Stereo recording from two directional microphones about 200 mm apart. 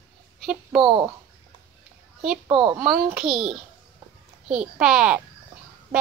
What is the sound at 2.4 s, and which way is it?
Speech, 25° right (ahead or behind).